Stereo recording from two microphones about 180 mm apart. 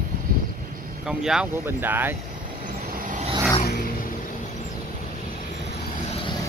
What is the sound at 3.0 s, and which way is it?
Vehicle, 40° right (ahead or behind).